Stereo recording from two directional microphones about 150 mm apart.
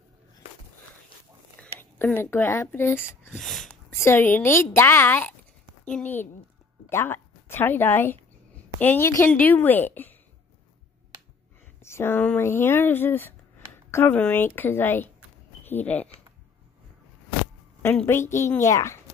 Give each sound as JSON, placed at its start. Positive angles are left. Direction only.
{"t": 1.6, "sound": "speech", "side_deg": 10}
{"t": 3.3, "sound": "a sound", "side_deg": 0}
{"t": 3.9, "sound": "speech", "side_deg": 15}
{"t": 11.8, "sound": "speech", "side_deg": 15}
{"t": 17.8, "sound": "speech", "side_deg": 15}